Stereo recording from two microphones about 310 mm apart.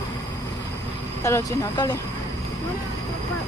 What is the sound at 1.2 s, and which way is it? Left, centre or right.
Speech, centre.